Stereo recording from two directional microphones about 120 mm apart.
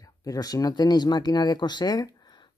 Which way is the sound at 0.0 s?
30° left (ahead or behind).